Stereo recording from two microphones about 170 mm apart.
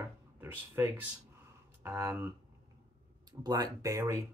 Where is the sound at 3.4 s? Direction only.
20° right (ahead or behind).